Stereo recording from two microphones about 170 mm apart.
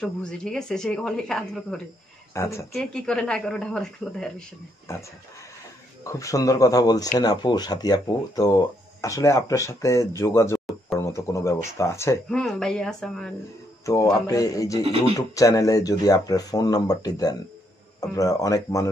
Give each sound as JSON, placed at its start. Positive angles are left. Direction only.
{"t": 0.0, "sound": "a woman's voice", "side_deg": 5}
{"t": 2.3, "sound": "speech", "side_deg": 15}
{"t": 2.7, "sound": "a woman's voice", "side_deg": 5}
{"t": 6.0, "sound": "speech", "side_deg": 20}
{"t": 12.3, "sound": "a woman's voice", "side_deg": 0}
{"t": 14.1, "sound": "speech", "side_deg": 20}